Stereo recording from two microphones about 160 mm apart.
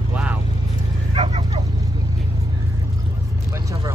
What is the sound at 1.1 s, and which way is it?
Vehicle, 30° right (ahead or behind).